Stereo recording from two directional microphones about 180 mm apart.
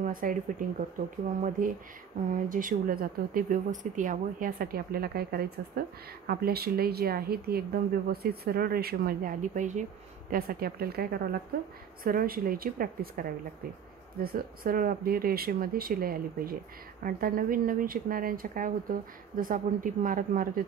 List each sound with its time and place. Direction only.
0.0 s speech: 50° right (ahead or behind)
10.3 s speech: 55° right (ahead or behind)